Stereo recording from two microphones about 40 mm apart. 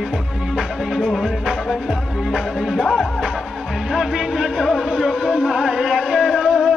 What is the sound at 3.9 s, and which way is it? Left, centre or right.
Music, centre.